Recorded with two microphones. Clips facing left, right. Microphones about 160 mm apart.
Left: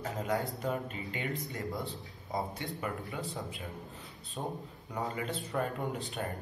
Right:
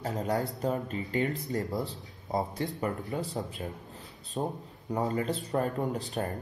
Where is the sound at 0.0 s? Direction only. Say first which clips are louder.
Right 3 dB; 40° right (ahead or behind).